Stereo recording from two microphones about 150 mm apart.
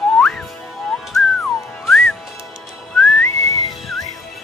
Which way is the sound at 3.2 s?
20° left (ahead or behind).